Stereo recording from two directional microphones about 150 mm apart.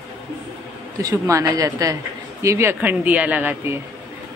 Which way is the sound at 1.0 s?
25° right (ahead or behind).